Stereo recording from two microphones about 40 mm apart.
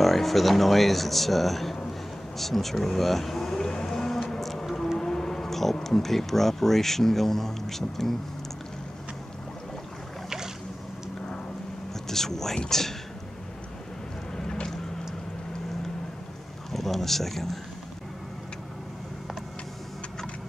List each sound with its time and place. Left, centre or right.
0.0 s speech: centre
2.3 s whale vocalization: centre
4.3 s music: centre
4.9 s speech: centre
12.1 s speech: centre
14.3 s boat: centre
16.7 s a sound: centre